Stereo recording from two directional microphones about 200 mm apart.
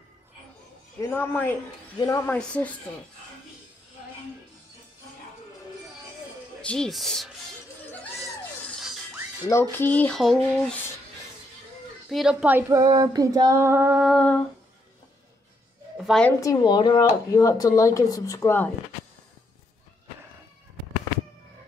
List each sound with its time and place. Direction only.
1.1 s speech: 10° left (ahead or behind)
6.6 s speech: 5° left (ahead or behind)
9.5 s speech: 10° left (ahead or behind)
12.1 s female singing: centre (ahead or behind)
16.0 s a woman's voice: 5° left (ahead or behind)
16.3 s speech: 20° left (ahead or behind)